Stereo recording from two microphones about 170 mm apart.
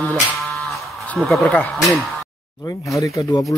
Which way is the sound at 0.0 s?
5° left (ahead or behind).